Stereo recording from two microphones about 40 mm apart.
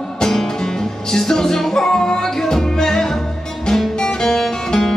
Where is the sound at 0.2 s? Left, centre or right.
Centre.